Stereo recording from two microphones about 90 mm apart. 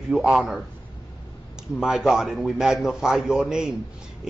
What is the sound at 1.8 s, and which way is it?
A man's voice, 5° right (ahead or behind).